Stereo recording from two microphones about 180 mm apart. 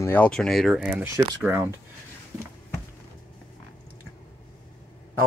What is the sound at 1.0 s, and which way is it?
Speech, 15° right (ahead or behind).